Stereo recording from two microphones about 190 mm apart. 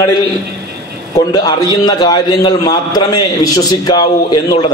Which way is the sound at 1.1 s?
20° left (ahead or behind).